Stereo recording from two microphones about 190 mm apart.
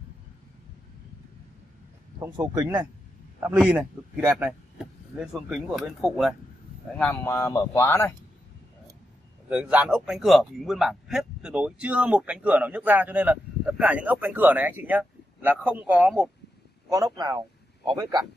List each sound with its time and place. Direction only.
2.1 s speech: 20° right (ahead or behind)
3.4 s speech: 5° right (ahead or behind)
7.0 s speech: 10° left (ahead or behind)
9.5 s speech: 5° right (ahead or behind)
16.9 s a man's voice: 20° right (ahead or behind)